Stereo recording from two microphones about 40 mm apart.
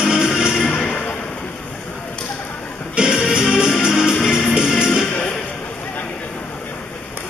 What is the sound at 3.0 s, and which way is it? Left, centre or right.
Music, right.